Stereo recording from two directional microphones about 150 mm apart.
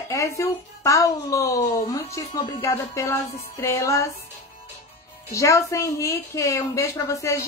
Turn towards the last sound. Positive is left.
turn(degrees=20)  # may be behind; listen again after turning